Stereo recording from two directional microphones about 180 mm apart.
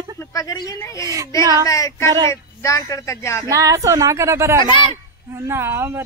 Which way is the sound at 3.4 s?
20° right (ahead or behind).